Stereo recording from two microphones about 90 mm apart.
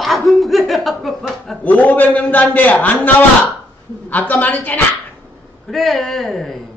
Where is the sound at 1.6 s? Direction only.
20° left (ahead or behind).